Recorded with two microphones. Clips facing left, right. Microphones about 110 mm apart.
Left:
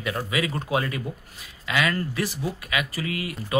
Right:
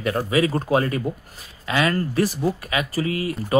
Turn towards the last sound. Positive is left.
turn(degrees=-35)  # may be behind; listen again after turning